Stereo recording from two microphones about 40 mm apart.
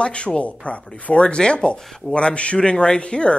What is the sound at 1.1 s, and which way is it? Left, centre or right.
Speech, left.